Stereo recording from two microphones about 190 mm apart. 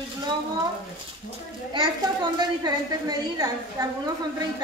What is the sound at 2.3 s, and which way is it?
A woman's voice, 20° right (ahead or behind).